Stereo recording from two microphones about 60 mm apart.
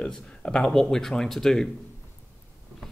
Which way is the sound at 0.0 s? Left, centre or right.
Centre.